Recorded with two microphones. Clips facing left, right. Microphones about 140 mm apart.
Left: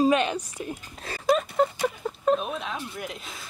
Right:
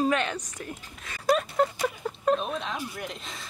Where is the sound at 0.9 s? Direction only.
35° left (ahead or behind).